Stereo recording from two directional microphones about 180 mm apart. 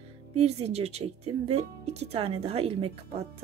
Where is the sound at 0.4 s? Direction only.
35° right (ahead or behind).